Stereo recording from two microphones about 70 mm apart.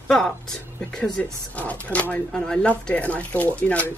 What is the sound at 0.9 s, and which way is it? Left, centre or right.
Speech, centre.